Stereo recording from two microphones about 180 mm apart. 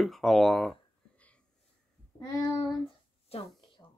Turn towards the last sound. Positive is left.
turn(degrees=35)  # may be behind; listen again after turning